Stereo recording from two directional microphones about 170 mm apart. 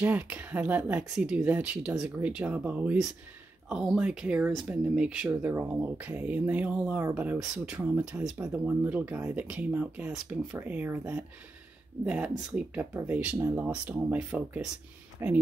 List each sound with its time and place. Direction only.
0.0 s speech: 10° right (ahead or behind)